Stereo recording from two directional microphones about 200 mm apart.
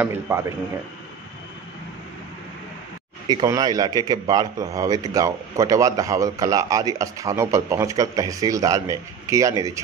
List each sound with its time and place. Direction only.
0.0 s a man's voice: 10° right (ahead or behind)
3.3 s a man's voice: 20° right (ahead or behind)